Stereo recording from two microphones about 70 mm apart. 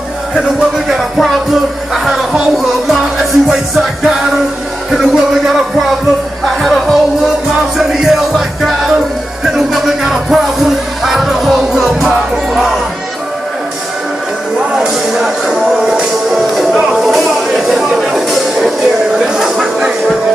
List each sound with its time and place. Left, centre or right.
0.3 s music: centre
14.8 s music: centre
16.9 s a sound: centre